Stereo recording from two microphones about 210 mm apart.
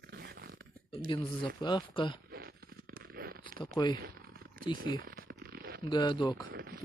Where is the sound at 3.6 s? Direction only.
20° left (ahead or behind).